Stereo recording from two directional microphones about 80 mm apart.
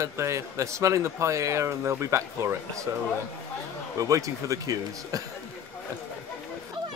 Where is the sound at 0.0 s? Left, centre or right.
Right.